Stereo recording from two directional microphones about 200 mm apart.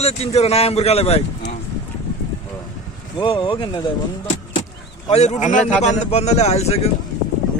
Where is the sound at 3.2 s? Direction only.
25° left (ahead or behind).